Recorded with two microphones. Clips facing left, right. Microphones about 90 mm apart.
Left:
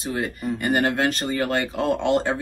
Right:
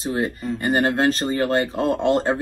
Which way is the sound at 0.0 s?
35° right (ahead or behind).